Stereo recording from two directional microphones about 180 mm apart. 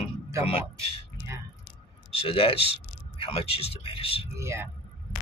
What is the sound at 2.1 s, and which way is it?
Speech, 30° left (ahead or behind).